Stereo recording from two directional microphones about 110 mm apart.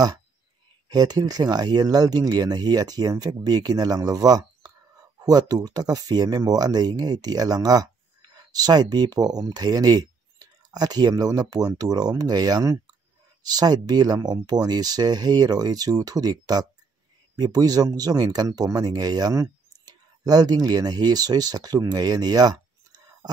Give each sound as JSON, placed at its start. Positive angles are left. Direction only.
{"t": 0.8, "sound": "speech", "side_deg": -35}